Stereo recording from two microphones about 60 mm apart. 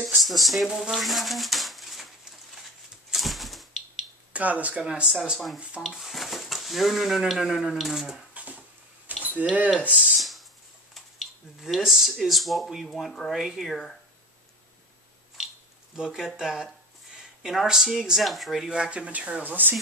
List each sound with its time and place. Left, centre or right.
0.0 s speech: centre
0.7 s speech: centre
0.9 s speech: centre
3.1 s a sound: centre
4.3 s speech: right
4.8 s speech: centre
9.0 s a sound: right
9.8 s speech: centre
10.1 s a sound: centre
12.2 s speech: centre
12.8 s speech: centre
13.3 s speech: centre
13.7 s speech: centre
16.0 s speech: centre; by 19.7 s right